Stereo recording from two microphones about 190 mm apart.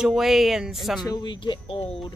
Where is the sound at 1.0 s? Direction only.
20° left (ahead or behind).